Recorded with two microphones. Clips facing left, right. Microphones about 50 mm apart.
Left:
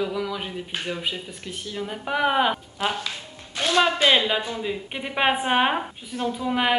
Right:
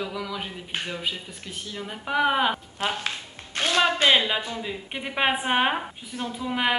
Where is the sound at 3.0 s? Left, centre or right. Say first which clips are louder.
Right 1 dB; right.